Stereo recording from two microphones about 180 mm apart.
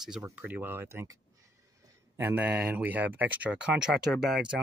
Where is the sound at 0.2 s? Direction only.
10° right (ahead or behind).